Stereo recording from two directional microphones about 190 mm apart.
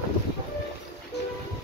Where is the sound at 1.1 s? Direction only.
65° left (ahead or behind).